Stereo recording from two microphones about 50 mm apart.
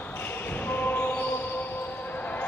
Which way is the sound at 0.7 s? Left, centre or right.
Left.